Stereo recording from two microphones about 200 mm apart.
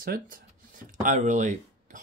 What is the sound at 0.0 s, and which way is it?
Speech, 45° right (ahead or behind).